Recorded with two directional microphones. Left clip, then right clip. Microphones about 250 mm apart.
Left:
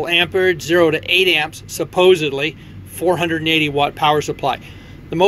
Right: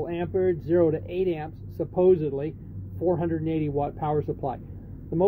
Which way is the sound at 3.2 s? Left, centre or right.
Centre.